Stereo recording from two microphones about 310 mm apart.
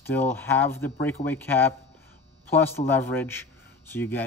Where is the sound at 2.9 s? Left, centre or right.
Centre.